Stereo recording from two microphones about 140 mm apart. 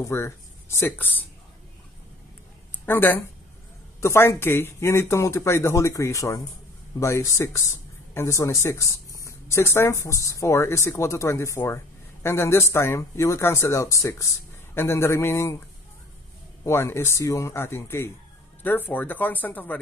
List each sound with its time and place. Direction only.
0.0 s speech: 20° left (ahead or behind)
2.8 s speech: 15° left (ahead or behind)
16.6 s speech: 20° left (ahead or behind)